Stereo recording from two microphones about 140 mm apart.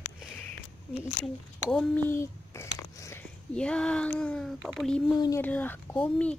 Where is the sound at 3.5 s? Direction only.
5° left (ahead or behind).